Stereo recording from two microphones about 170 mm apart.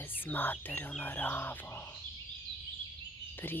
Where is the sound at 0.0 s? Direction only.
10° left (ahead or behind).